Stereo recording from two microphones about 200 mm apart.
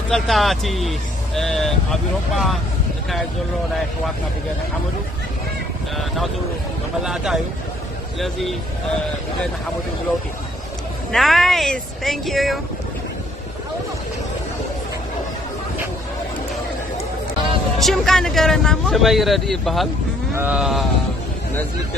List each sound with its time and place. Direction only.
0.1 s speech: centre (ahead or behind)
5.9 s speech: centre (ahead or behind)
11.1 s speech: centre (ahead or behind)
17.7 s speech: centre (ahead or behind)